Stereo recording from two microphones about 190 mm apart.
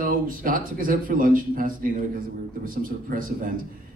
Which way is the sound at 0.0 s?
50° right (ahead or behind).